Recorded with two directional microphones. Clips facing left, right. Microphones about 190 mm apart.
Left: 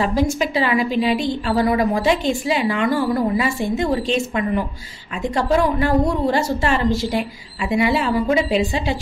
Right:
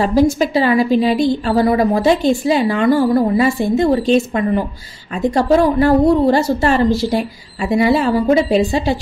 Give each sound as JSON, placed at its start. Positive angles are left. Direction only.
{"t": 0.0, "sound": "a woman's voice", "side_deg": -35}